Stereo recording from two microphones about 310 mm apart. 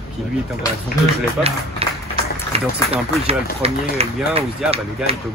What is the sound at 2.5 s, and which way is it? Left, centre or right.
Speech, centre.